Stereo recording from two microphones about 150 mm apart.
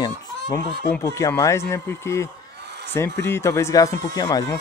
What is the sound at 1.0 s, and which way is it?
Speech, 20° left (ahead or behind).